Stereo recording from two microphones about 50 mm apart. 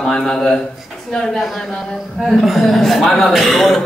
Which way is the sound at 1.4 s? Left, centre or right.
Centre.